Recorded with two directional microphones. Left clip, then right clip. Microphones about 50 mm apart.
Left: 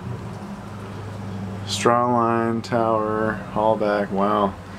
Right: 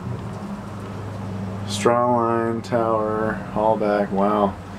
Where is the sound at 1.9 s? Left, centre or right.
Left.